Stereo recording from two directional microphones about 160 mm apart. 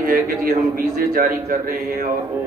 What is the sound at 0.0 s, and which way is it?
A man's voice, 60° right (ahead or behind).